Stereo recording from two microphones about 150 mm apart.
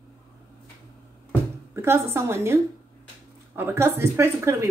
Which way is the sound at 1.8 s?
15° right (ahead or behind).